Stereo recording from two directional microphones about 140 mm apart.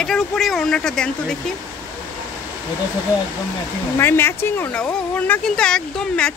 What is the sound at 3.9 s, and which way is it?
Speech, 15° left (ahead or behind).